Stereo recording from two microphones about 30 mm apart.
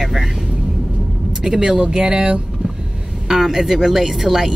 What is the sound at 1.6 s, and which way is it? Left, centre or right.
Music, right.